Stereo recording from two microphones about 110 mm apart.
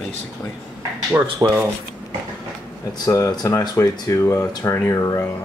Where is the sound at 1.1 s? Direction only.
20° right (ahead or behind).